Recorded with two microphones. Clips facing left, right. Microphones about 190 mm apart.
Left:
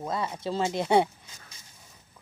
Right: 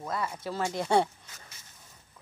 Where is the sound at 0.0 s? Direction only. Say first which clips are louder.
Left 3 dB; 25° left (ahead or behind).